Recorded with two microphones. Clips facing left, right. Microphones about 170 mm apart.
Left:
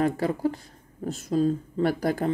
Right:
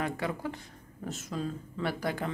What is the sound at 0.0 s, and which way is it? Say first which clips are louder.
A woman's voice: left 9 dB; 35° left (ahead or behind).